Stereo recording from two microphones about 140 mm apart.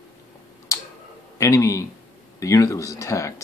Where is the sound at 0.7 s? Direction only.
20° left (ahead or behind).